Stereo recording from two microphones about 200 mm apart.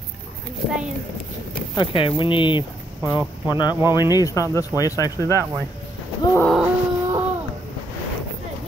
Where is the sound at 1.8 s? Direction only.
25° left (ahead or behind).